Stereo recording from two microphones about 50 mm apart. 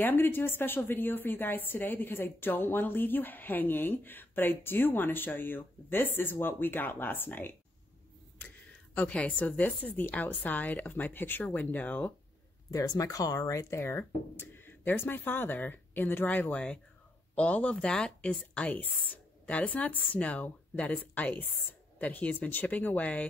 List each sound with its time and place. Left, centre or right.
0.0 s a woman's voice: left
9.1 s speech: left
10.4 s chopping: left
13.5 s a woman's voice: left
20.0 s chopping: left
22.0 s speech: left
22.5 s chopping: left